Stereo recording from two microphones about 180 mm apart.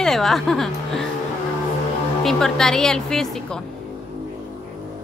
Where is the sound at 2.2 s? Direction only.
5° left (ahead or behind).